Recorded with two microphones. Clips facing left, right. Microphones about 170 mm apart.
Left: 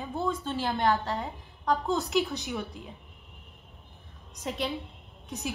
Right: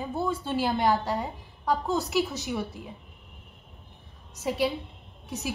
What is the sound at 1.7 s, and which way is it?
A woman's voice, 5° right (ahead or behind).